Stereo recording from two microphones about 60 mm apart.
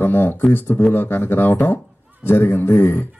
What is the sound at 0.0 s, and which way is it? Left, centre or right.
A man's voice, left.